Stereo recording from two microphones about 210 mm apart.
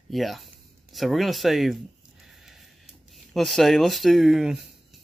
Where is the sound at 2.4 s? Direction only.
Centre (ahead or behind).